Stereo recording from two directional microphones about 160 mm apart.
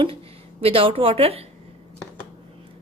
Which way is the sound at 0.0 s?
35° right (ahead or behind).